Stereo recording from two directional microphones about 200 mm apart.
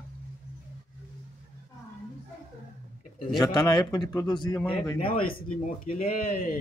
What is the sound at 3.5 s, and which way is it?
Speech, 20° left (ahead or behind).